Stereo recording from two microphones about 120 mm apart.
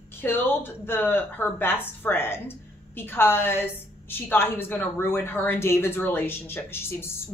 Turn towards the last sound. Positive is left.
turn(degrees=20)  # may be behind; listen again after turning